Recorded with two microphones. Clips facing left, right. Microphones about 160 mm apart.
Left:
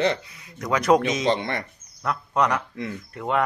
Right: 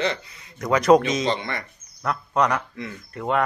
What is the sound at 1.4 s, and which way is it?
Speech, 25° left (ahead or behind).